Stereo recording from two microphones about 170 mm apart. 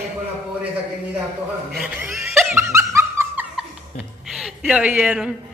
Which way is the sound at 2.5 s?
15° right (ahead or behind).